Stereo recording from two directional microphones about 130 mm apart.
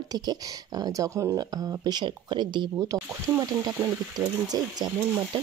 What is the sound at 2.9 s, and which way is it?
Speech, 25° right (ahead or behind).